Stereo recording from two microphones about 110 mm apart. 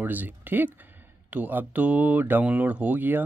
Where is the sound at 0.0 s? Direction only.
15° right (ahead or behind).